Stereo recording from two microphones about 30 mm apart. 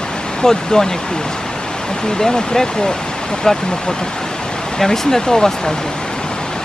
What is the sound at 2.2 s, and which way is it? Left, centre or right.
Speech, centre.